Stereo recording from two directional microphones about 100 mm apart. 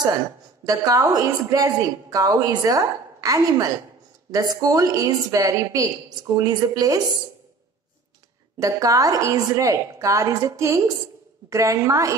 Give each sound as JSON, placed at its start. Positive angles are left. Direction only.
{"t": 0.7, "sound": "a woman's voice", "side_deg": -35}
{"t": 8.5, "sound": "a woman's voice", "side_deg": -35}